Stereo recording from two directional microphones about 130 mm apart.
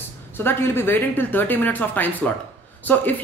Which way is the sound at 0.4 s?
20° left (ahead or behind).